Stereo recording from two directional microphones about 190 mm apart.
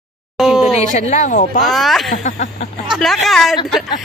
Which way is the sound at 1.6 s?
Centre (ahead or behind).